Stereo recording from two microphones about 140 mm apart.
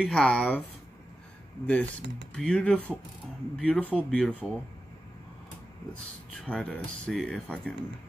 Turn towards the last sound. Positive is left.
turn(degrees=5)  # may be behind; listen again after turning